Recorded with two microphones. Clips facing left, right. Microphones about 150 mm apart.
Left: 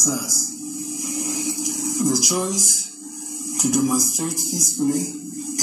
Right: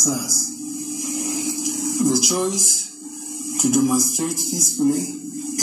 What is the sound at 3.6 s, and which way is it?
A man's voice, centre (ahead or behind).